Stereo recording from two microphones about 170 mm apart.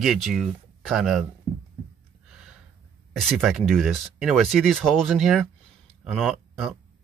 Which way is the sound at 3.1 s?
Centre (ahead or behind).